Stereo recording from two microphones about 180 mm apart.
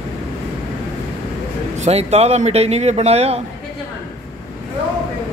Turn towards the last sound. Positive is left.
turn(degrees=-35)  # may be behind; listen again after turning